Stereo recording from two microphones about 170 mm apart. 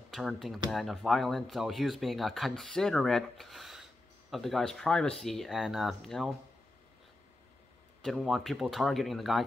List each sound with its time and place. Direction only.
0.1 s speech: centre (ahead or behind)
8.0 s speech: centre (ahead or behind)